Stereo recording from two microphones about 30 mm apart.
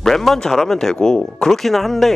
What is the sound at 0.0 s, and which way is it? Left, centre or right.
Speech, centre.